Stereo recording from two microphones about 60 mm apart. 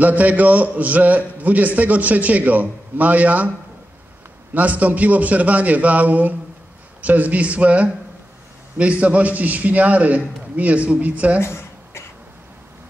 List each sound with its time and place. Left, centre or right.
0.0 s a man's voice: right
4.6 s a man's voice: right
11.4 s a sound: left